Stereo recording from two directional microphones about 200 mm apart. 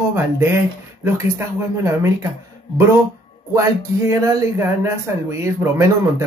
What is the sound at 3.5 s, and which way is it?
A man's voice, 15° right (ahead or behind).